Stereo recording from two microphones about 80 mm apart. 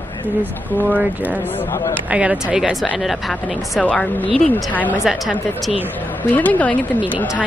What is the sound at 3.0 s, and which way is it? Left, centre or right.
Speech, centre.